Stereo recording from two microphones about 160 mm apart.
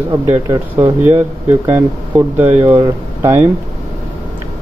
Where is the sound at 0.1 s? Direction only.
20° right (ahead or behind).